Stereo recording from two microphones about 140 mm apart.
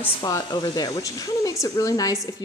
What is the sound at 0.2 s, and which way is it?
Speech, 30° left (ahead or behind).